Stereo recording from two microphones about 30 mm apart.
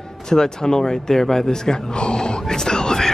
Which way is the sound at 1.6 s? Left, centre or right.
Left.